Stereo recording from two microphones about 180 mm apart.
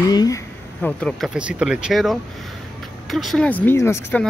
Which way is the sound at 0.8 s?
5° left (ahead or behind).